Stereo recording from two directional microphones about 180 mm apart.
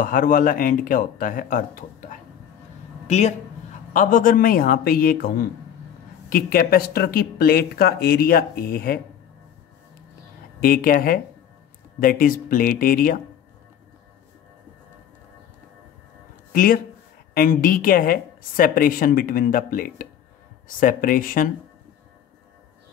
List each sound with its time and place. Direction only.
0.0 s a woman's voice: 50° left (ahead or behind)
10.6 s a woman's voice: 55° left (ahead or behind)
16.5 s a woman's voice: 50° left (ahead or behind)